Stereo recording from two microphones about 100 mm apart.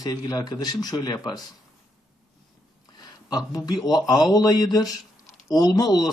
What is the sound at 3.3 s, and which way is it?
Speech, 40° left (ahead or behind).